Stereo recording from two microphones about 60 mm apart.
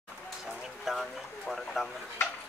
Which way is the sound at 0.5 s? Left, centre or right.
Centre.